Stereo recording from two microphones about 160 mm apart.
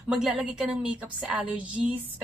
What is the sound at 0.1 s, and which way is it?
A woman's voice, 5° right (ahead or behind).